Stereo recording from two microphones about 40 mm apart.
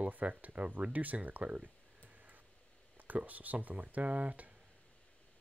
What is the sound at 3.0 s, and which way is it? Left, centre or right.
Speech, right.